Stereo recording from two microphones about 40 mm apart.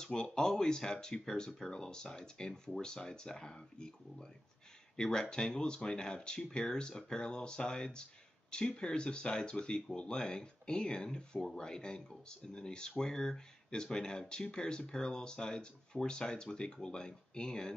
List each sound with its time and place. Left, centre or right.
0.0 s speech: centre